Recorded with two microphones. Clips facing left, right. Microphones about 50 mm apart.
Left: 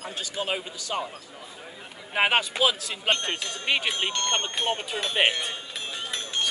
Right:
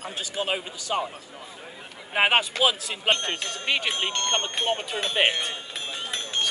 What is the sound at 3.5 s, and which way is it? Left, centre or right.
Speech, centre.